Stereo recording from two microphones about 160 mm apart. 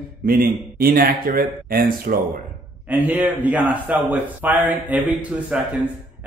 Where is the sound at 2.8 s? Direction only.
10° right (ahead or behind).